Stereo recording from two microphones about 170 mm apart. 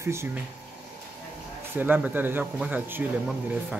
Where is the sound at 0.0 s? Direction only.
15° right (ahead or behind).